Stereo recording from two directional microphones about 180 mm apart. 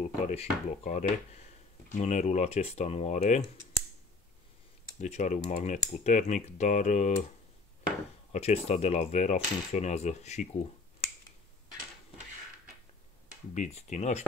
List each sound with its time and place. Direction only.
0.0 s speech: 40° left (ahead or behind)
2.0 s coin: 40° left (ahead or behind)
5.0 s coin: 40° left (ahead or behind)
8.3 s coin: 35° left (ahead or behind)
13.6 s coin: 40° left (ahead or behind)